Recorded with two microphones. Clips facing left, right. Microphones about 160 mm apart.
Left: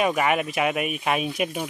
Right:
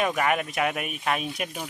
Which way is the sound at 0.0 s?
10° left (ahead or behind).